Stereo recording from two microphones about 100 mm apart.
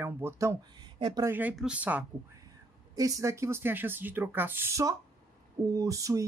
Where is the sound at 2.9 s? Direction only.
35° right (ahead or behind).